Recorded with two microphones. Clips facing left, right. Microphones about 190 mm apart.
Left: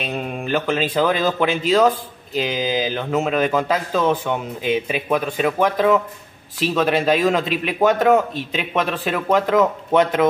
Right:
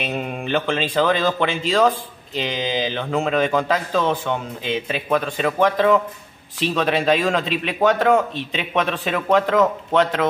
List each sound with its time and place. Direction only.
0.0 s a man's voice: centre (ahead or behind)